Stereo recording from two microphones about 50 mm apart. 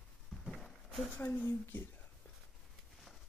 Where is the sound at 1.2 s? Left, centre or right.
Left.